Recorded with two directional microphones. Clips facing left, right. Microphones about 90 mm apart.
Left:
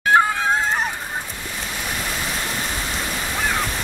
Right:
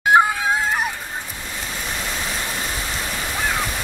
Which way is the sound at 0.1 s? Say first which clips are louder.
Right 1 dB; 15° right (ahead or behind).